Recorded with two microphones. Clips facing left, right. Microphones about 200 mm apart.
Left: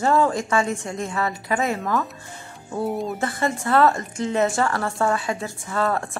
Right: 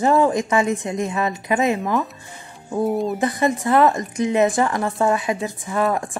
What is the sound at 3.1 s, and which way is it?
A woman's voice, 15° right (ahead or behind).